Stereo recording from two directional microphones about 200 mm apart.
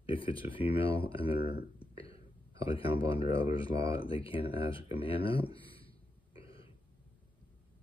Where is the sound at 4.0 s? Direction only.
25° left (ahead or behind).